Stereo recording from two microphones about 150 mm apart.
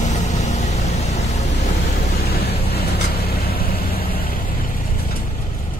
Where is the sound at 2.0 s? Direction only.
90° left.